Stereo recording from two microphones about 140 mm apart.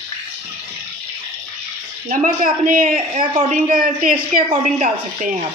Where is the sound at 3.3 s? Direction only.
50° right (ahead or behind).